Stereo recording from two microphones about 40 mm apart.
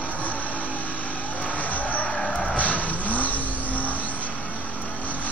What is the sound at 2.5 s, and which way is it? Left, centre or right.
Vehicle, left.